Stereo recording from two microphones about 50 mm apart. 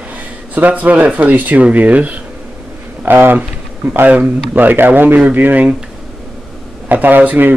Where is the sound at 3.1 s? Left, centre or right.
Right.